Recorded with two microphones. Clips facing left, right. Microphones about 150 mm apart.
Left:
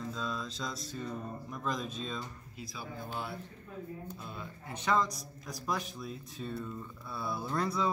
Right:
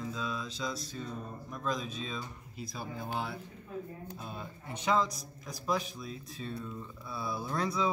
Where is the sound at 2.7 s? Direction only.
70° right (ahead or behind).